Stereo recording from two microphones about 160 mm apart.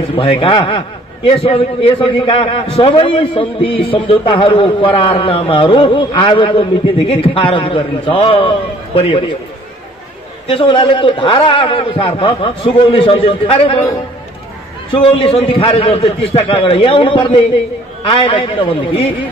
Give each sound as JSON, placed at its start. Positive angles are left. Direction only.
{"t": 0.1, "sound": "a man's voice", "side_deg": 35}
{"t": 10.4, "sound": "a man's voice", "side_deg": 35}
{"t": 14.9, "sound": "a man's voice", "side_deg": 35}